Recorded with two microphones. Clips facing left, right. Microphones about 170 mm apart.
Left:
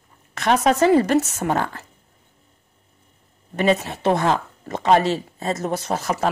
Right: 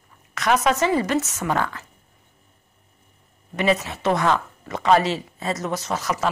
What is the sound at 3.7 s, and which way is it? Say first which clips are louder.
Speech: left 2 dB; 35° left (ahead or behind).